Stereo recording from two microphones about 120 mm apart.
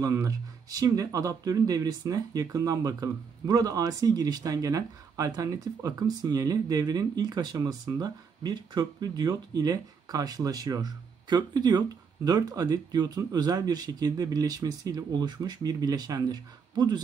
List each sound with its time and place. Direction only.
0.0 s speech: 30° right (ahead or behind)